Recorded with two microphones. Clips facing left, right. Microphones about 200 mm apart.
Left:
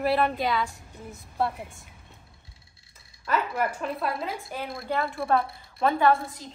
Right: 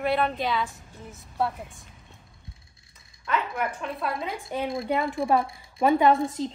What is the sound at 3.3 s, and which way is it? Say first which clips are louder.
A woman's voice: left 1 dB; centre (ahead or behind).